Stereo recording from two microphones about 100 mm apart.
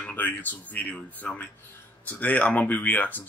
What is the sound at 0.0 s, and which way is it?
A man's voice, 15° left (ahead or behind).